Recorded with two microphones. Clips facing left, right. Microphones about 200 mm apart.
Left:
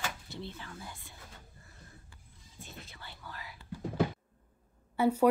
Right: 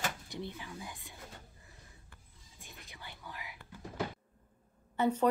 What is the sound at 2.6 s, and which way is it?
Whispering, 15° right (ahead or behind).